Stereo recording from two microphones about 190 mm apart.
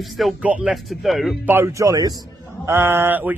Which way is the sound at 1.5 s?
15° right (ahead or behind).